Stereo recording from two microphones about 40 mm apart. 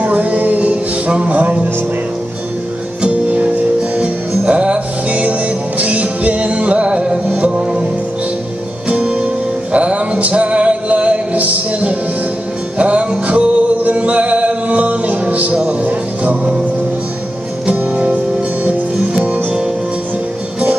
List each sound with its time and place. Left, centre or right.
0.0 s music: right
1.4 s speech: right
3.3 s music: right
8.8 s music: right
17.6 s music: right